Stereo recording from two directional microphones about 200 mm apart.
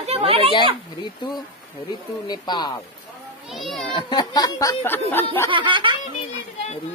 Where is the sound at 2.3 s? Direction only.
20° left (ahead or behind).